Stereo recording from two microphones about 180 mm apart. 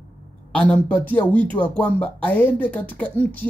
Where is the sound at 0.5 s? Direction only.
10° left (ahead or behind).